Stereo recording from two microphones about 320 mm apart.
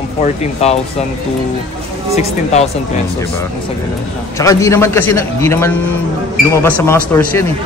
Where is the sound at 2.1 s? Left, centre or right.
Centre.